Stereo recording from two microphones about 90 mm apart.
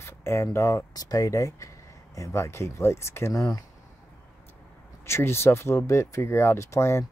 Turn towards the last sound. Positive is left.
turn(degrees=30)  # may be behind; listen again after turning